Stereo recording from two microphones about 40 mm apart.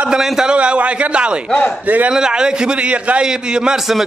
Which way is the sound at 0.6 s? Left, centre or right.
Right.